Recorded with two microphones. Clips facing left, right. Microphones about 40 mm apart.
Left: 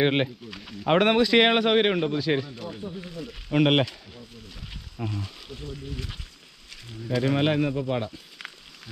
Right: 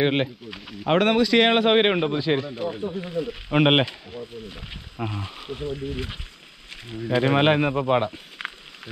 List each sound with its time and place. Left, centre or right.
0.0 s speech: centre
1.5 s a man's voice: centre
1.8 s speech: right